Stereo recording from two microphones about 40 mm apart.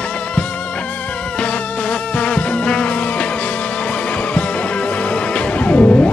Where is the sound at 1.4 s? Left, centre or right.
Left.